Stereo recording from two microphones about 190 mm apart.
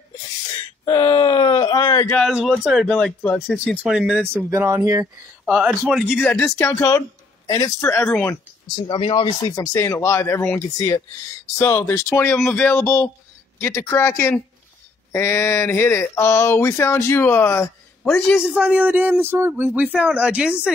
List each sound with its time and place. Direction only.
0.8 s groan: 20° left (ahead or behind)
2.1 s a man's voice: centre (ahead or behind); by 5.0 s 15° right (ahead or behind)
5.4 s speech: centre (ahead or behind)
6.1 s speech: 10° left (ahead or behind)
8.8 s speech: 25° left (ahead or behind)
18.0 s a man's voice: 5° left (ahead or behind)